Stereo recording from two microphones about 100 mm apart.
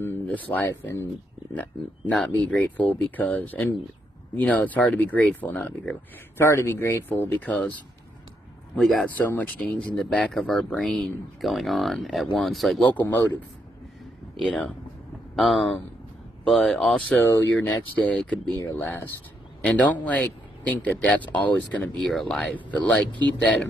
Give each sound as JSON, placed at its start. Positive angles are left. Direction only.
{"t": 0.0, "sound": "speech", "side_deg": 20}
{"t": 6.3, "sound": "speech", "side_deg": 25}
{"t": 8.7, "sound": "speech", "side_deg": 0}
{"t": 9.0, "sound": "speech", "side_deg": 15}
{"t": 11.4, "sound": "speech", "side_deg": 0}
{"t": 12.9, "sound": "speech", "side_deg": 20}
{"t": 14.3, "sound": "speech", "side_deg": 0}
{"t": 17.2, "sound": "speech", "side_deg": 25}
{"t": 19.6, "sound": "speech", "side_deg": 15}